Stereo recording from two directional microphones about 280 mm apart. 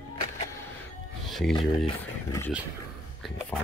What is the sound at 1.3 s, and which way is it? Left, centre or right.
Speech, centre.